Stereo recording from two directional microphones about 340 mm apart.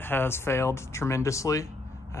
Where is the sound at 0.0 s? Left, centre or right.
Centre.